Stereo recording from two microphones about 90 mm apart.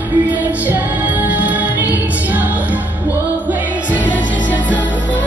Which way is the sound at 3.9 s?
15° left (ahead or behind).